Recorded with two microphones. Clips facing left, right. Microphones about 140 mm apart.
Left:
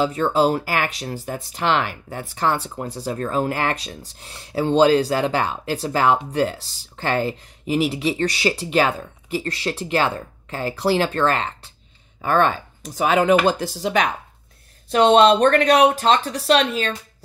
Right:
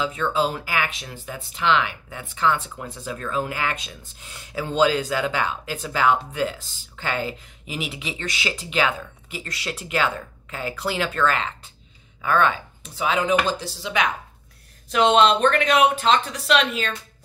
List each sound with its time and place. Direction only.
0.0 s speech: 40° left (ahead or behind)